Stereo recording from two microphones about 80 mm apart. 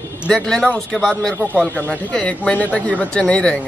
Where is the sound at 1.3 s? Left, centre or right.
Left.